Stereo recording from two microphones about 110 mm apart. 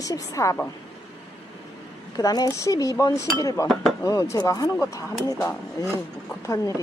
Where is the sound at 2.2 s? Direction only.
35° left (ahead or behind).